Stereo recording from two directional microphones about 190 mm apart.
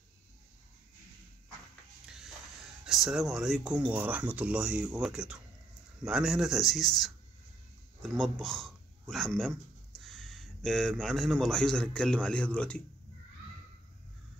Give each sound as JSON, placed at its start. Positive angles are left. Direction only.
{"t": 2.8, "sound": "speech", "side_deg": 0}